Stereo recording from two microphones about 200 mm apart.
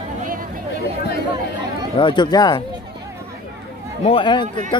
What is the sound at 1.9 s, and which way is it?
Speech, 25° left (ahead or behind).